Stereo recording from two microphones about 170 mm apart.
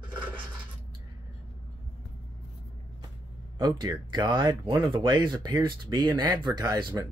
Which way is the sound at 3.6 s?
25° right (ahead or behind).